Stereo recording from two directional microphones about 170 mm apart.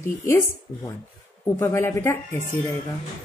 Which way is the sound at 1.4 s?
15° left (ahead or behind).